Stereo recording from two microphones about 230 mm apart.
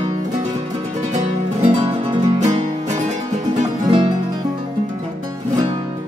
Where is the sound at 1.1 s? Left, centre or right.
Right.